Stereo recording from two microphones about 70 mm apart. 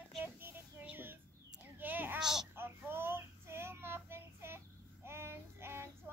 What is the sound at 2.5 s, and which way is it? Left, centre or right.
Child singing, right.